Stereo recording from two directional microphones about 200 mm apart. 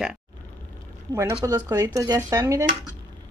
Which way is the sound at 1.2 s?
15° right (ahead or behind).